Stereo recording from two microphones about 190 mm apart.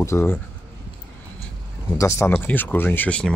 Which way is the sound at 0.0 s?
15° left (ahead or behind).